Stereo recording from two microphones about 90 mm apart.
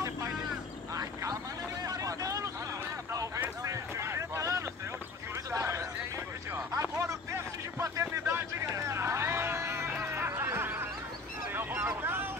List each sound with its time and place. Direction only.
0.9 s vehicle: 40° right (ahead or behind)
3.6 s boat: 35° right (ahead or behind)
5.5 s a sound: 35° right (ahead or behind)
11.5 s vehicle: 25° right (ahead or behind)